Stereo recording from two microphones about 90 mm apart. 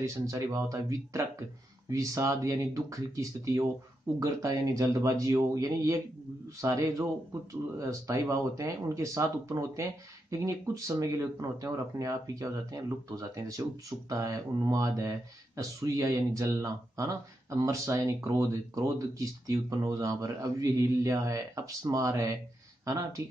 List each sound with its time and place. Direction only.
0.0 s speech: 35° right (ahead or behind)